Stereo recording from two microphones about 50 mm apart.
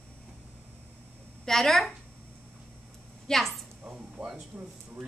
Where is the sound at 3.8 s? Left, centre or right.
Right.